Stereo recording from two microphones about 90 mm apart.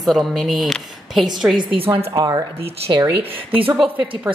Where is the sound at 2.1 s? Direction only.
45° right (ahead or behind).